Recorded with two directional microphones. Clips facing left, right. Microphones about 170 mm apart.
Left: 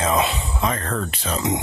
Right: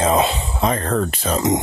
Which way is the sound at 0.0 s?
30° right (ahead or behind).